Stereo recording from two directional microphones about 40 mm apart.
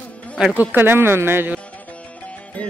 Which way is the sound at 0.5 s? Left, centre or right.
Right.